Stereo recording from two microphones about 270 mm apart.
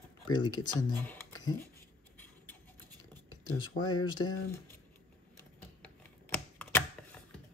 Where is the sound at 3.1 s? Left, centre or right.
Centre.